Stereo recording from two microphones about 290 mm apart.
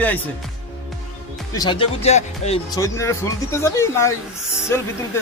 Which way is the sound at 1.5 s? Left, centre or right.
Centre.